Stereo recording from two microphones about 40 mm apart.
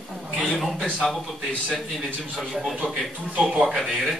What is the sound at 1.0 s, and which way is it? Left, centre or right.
Speech, centre.